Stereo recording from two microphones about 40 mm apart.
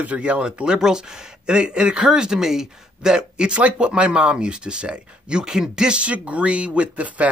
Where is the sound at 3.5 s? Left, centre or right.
Right.